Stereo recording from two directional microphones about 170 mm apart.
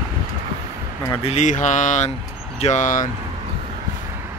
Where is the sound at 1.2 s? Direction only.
45° left (ahead or behind).